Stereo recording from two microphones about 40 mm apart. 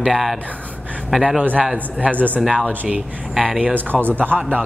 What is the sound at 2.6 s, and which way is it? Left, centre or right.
Speech, right.